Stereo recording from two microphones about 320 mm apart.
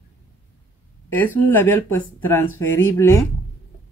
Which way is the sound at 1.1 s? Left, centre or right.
Centre.